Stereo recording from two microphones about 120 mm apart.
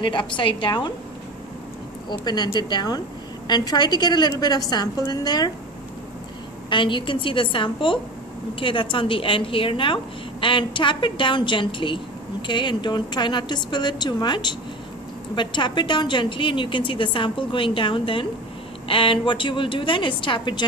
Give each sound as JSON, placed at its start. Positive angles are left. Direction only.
{"t": 0.0, "sound": "a woman's voice", "side_deg": 40}
{"t": 2.0, "sound": "a woman's voice", "side_deg": 35}
{"t": 6.7, "sound": "a woman's voice", "side_deg": 45}